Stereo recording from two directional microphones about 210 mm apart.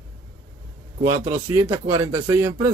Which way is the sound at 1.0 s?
20° right (ahead or behind).